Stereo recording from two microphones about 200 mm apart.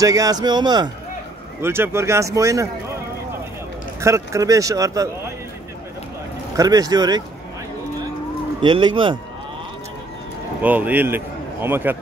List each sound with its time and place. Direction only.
0.0 s speech: 15° right (ahead or behind)
4.0 s speech: 15° right (ahead or behind)
6.5 s speech: 20° right (ahead or behind)
8.6 s speech: 25° right (ahead or behind)
10.6 s a man's voice: 10° right (ahead or behind)